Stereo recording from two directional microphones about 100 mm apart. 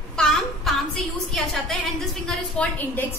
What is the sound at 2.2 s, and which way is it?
Speech, 15° left (ahead or behind).